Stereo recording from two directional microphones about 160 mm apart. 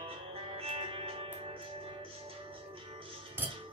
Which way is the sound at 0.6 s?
35° right (ahead or behind).